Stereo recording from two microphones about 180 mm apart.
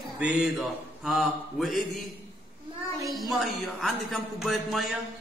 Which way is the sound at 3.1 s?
Centre (ahead or behind).